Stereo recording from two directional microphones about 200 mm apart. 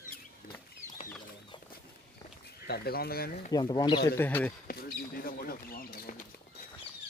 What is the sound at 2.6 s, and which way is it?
Speech, 50° left (ahead or behind).